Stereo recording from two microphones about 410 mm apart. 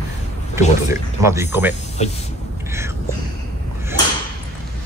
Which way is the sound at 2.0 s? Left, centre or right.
Centre.